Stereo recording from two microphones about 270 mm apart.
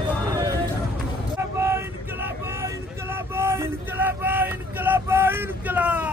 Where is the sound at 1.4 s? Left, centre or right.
Centre.